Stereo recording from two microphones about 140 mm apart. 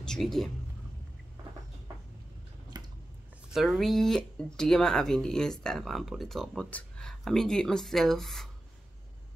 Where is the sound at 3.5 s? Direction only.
Centre (ahead or behind).